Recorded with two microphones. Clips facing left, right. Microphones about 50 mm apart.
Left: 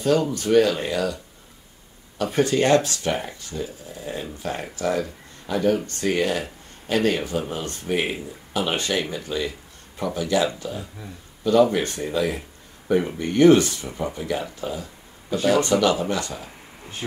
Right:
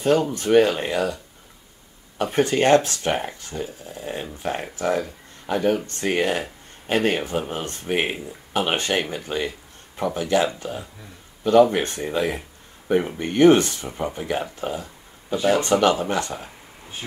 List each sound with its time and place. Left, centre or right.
0.0 s speech: right